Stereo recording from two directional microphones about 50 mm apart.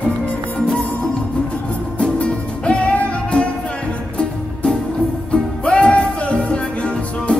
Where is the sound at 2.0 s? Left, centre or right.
Left.